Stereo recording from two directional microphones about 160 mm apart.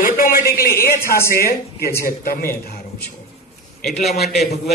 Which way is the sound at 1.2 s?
70° left (ahead or behind).